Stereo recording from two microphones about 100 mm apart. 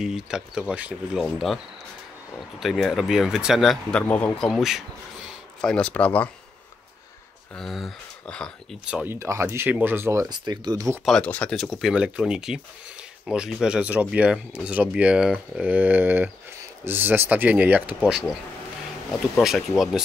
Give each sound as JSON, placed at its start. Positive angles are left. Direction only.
{"t": 0.0, "sound": "speech", "side_deg": -5}
{"t": 1.2, "sound": "speech", "side_deg": 0}
{"t": 2.6, "sound": "speech", "side_deg": 0}
{"t": 4.0, "sound": "speech", "side_deg": 15}
{"t": 4.5, "sound": "speech", "side_deg": -5}
{"t": 5.6, "sound": "speech", "side_deg": 10}
{"t": 7.5, "sound": "speech", "side_deg": 5}
{"t": 8.8, "sound": "speech", "side_deg": -10}
{"t": 9.1, "sound": "speech", "side_deg": -30}
{"t": 10.2, "sound": "speech", "side_deg": -45}
{"t": 11.2, "sound": "speech", "side_deg": 15}
{"t": 11.5, "sound": "speech", "side_deg": 0}
{"t": 19.3, "sound": "speech", "side_deg": 0}